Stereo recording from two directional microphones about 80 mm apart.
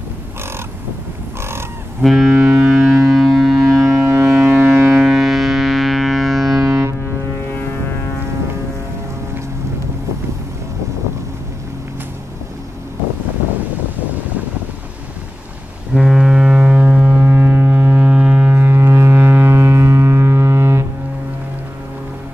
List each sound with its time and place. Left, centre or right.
2.0 s a sound: centre
2.3 s music: right
2.7 s civil defense siren: centre
3.8 s civil defense siren: right
5.0 s music: centre
6.6 s ship: right
15.9 s ship: centre
17.2 s ship: right
18.5 s ship: right